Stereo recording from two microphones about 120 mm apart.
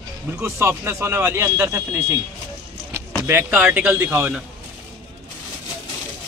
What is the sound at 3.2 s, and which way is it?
Speech, 20° right (ahead or behind).